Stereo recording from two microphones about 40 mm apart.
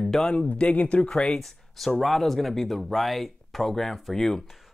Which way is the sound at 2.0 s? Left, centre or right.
Centre.